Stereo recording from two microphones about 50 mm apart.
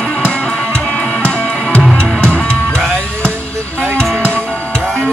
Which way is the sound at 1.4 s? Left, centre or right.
Centre.